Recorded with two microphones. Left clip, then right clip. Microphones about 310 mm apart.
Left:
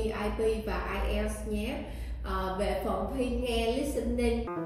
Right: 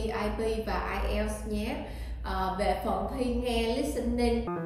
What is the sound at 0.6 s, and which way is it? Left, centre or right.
Speech, centre.